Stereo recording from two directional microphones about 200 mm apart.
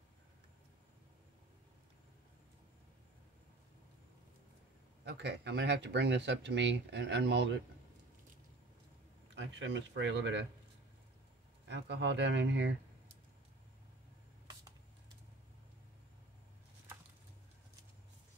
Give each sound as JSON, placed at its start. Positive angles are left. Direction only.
{"t": 5.0, "sound": "speech", "side_deg": -55}
{"t": 9.3, "sound": "speech", "side_deg": -65}
{"t": 11.6, "sound": "speech", "side_deg": -60}